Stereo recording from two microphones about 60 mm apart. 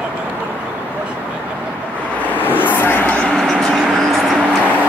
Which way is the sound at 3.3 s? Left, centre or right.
Centre.